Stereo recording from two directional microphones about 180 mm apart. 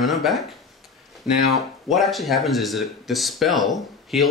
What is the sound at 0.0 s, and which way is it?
Speech, centre (ahead or behind).